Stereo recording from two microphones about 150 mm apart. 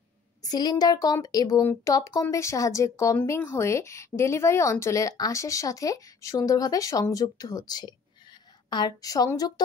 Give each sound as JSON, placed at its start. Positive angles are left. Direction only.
{"t": 0.4, "sound": "speech", "side_deg": 25}